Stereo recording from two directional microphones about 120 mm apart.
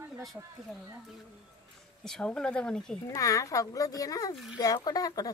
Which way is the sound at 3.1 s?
30° left (ahead or behind).